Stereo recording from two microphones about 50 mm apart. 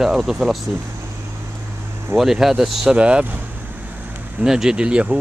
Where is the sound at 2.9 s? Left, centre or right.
Right.